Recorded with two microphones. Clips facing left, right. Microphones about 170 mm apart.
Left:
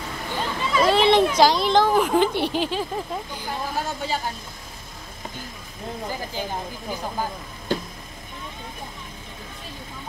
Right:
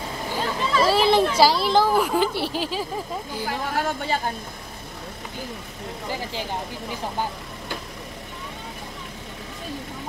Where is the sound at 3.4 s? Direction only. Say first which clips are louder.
Right 3 dB; 70° right (ahead or behind).